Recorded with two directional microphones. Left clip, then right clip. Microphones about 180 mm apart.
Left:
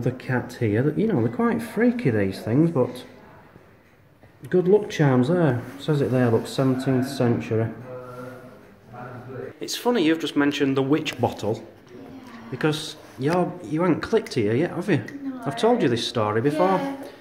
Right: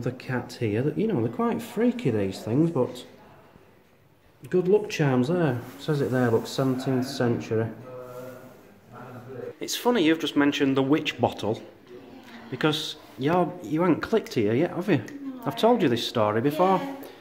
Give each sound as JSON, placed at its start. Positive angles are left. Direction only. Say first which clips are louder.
{"t": 0.0, "sound": "speech", "louder": "left 4 dB", "side_deg": 0}
{"t": 4.5, "sound": "speech", "louder": "left 3 dB", "side_deg": -5}
{"t": 9.6, "sound": "speech", "louder": "left 1 dB", "side_deg": -20}